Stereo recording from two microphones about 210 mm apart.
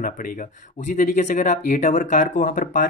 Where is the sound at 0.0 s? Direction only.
40° left (ahead or behind).